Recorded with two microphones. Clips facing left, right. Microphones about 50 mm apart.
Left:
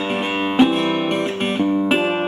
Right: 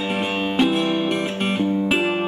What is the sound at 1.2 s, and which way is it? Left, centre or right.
Guitar, centre.